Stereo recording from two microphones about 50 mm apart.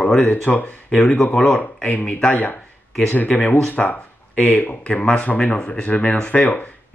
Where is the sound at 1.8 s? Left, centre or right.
Left.